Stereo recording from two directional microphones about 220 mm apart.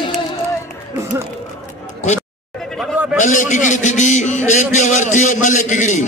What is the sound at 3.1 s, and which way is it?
A man's voice, 35° left (ahead or behind).